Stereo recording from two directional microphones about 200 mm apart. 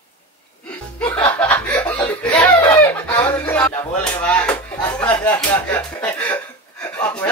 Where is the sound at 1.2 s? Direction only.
5° left (ahead or behind).